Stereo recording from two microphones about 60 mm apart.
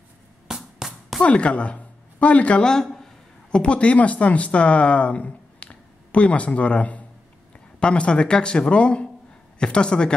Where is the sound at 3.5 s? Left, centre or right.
Centre.